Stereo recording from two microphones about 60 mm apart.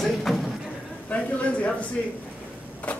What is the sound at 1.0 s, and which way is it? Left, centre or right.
Speech, left.